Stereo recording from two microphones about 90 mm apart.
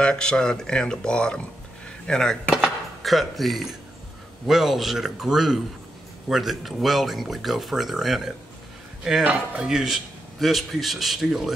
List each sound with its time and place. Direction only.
0.0 s speech: 10° left (ahead or behind)
9.2 s speech: 15° right (ahead or behind)
9.7 s speech: 5° right (ahead or behind)